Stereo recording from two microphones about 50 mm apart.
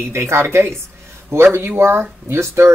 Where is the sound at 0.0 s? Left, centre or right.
Right.